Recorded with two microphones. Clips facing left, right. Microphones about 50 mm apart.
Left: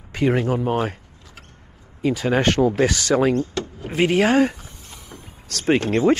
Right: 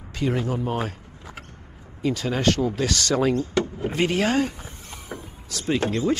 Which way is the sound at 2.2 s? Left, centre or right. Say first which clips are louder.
Left 5 dB; left.